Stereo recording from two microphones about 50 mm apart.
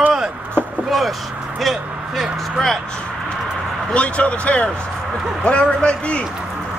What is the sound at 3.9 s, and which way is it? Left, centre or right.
A man's voice, left.